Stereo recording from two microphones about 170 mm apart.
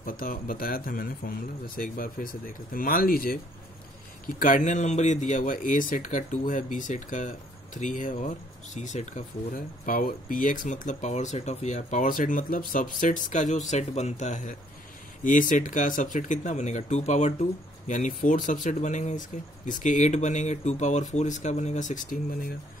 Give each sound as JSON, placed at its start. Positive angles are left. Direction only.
{"t": 0.0, "sound": "speech", "side_deg": 55}